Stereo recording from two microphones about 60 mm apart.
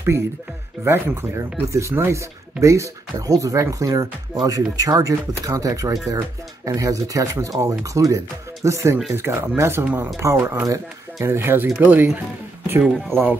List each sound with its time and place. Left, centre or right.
0.1 s speech: right
1.7 s speech: right
13.1 s speech: right